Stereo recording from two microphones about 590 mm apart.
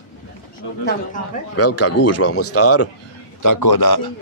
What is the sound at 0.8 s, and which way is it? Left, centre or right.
Speech, centre.